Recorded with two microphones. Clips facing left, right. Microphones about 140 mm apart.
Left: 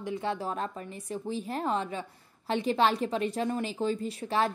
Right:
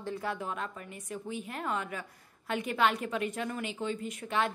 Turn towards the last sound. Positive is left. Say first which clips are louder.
# left 3 dB
turn(degrees=35)  # may be behind; listen again after turning